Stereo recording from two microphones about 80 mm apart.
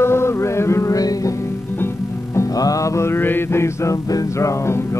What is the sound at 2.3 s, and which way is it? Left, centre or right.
Music, left.